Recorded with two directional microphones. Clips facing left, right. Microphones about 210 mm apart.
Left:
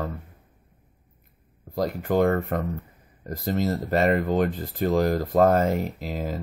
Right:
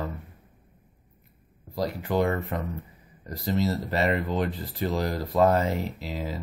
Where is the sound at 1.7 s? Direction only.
50° left (ahead or behind).